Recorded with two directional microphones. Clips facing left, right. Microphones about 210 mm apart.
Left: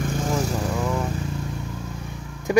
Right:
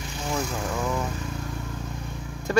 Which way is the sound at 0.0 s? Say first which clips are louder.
Left 6 dB; 50° left (ahead or behind).